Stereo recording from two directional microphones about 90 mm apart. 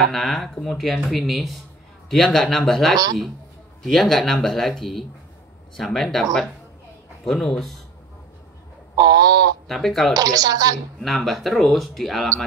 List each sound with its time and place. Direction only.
0.0 s speech: centre (ahead or behind)
7.2 s speech: 5° left (ahead or behind)
8.9 s a sound: 45° right (ahead or behind)
9.7 s speech: centre (ahead or behind)
10.1 s a woman's voice: 45° right (ahead or behind)
11.0 s speech: centre (ahead or behind)